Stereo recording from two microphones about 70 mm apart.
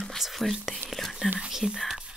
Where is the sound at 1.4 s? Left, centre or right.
Centre.